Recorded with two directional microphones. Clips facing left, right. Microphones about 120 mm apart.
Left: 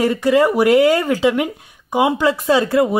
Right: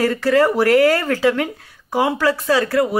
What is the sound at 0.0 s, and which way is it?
Speech, 15° left (ahead or behind).